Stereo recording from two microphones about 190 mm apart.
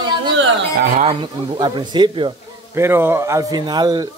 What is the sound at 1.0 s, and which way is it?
Speech, 30° right (ahead or behind).